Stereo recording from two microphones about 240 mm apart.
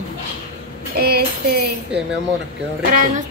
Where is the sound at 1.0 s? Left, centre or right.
Right.